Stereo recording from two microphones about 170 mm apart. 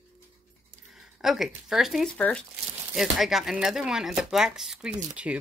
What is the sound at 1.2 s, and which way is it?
Speech, centre (ahead or behind).